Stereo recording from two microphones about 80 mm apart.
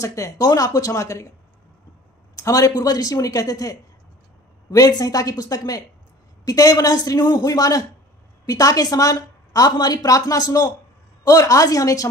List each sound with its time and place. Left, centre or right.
0.0 s a woman's voice: left
2.3 s a woman's voice: left